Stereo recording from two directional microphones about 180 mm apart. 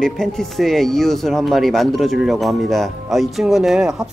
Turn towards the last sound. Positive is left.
turn(degrees=0)  # may be behind; listen again after turning